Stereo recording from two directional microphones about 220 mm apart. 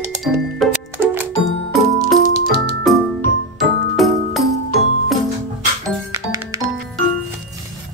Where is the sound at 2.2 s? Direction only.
35° left (ahead or behind).